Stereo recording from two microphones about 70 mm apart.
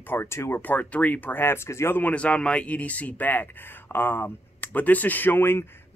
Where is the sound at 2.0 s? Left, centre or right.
Left.